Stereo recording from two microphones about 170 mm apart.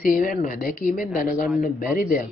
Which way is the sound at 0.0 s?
55° left (ahead or behind).